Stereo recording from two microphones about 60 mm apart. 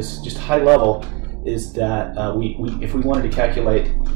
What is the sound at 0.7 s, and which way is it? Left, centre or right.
Speech, centre.